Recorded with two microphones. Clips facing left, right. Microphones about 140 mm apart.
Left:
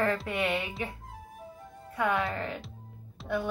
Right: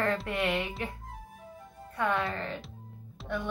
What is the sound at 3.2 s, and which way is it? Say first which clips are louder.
Music: left 3 dB; centre (ahead or behind).